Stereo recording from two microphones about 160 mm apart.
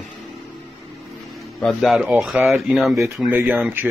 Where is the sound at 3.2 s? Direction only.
10° right (ahead or behind).